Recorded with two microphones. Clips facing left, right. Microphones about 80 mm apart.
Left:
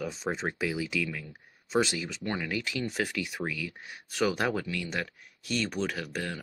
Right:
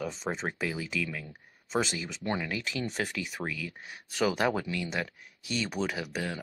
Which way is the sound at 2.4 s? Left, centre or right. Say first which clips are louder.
Left 1 dB; centre.